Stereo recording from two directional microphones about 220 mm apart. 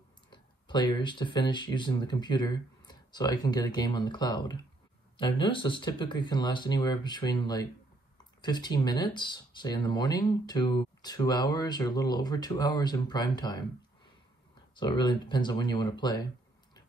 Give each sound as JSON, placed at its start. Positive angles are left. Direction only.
{"t": 0.3, "sound": "speech", "side_deg": 20}
{"t": 14.8, "sound": "speech", "side_deg": 20}